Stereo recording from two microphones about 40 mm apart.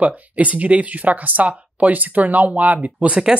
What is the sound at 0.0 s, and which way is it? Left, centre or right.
Speech, right.